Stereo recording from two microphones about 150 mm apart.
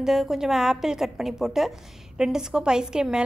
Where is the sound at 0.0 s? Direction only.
Centre (ahead or behind).